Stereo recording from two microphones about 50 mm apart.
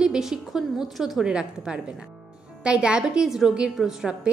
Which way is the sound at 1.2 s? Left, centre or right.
Centre.